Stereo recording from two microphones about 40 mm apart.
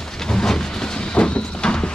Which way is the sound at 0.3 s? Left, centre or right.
Centre.